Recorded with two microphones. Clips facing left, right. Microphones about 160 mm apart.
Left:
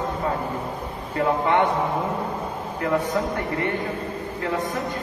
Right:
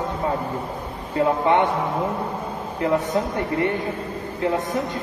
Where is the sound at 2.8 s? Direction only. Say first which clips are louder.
Right 2 dB; 20° right (ahead or behind).